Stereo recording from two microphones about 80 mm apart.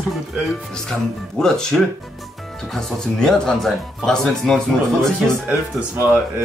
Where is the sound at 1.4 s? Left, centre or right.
Centre.